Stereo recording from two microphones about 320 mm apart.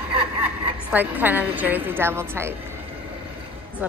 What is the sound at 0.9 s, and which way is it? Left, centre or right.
A woman's voice, centre.